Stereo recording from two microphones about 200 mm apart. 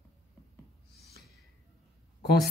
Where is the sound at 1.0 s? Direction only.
50° left (ahead or behind).